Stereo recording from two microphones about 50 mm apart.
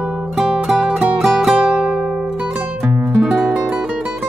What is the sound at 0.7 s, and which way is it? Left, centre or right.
Music, right.